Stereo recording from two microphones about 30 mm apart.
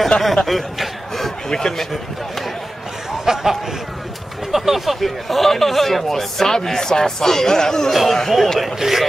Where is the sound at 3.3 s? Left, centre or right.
Centre.